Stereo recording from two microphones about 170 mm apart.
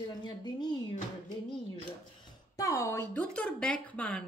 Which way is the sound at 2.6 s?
20° left (ahead or behind).